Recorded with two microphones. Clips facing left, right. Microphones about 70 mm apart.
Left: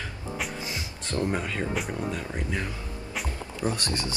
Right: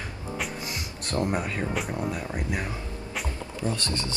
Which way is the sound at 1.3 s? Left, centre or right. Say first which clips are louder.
Right 1 dB; centre.